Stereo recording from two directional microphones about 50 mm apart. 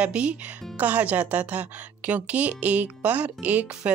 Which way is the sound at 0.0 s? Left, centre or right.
Right.